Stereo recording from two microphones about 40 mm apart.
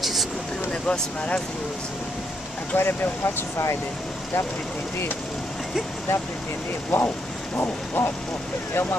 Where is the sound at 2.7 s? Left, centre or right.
Left.